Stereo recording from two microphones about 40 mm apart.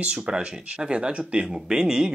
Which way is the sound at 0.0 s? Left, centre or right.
Right.